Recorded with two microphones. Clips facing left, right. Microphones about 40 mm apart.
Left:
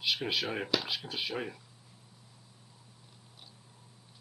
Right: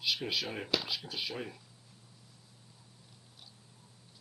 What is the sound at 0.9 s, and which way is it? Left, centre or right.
Speech, centre.